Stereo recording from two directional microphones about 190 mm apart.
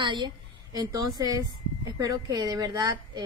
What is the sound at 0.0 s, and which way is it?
A woman's voice, 25° right (ahead or behind).